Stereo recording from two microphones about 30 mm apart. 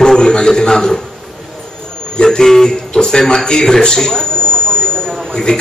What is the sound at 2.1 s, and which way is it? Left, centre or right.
A man's voice, left.